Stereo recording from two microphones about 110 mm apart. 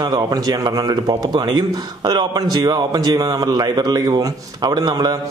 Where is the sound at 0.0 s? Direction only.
40° right (ahead or behind).